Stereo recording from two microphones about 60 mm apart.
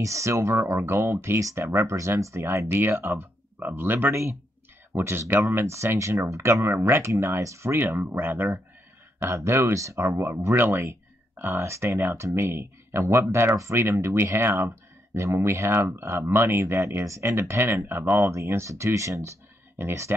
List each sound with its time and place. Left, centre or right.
0.0 s speech: right
2.7 s speech: right
4.1 s speech: right
7.1 s speech: right
9.3 s speech: right
17.0 s speech: right
18.2 s speech: right
19.8 s speech: right